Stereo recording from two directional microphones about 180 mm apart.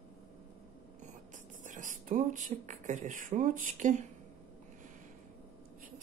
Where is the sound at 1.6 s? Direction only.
45° right (ahead or behind).